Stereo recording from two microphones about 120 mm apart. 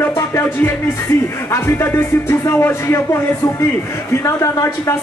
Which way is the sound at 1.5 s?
20° left (ahead or behind).